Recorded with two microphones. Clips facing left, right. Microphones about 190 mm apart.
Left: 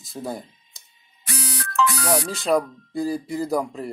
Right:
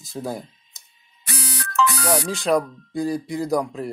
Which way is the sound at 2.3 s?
Centre (ahead or behind).